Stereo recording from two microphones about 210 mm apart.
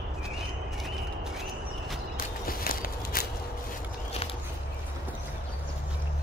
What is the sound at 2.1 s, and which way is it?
Walk, 45° left (ahead or behind).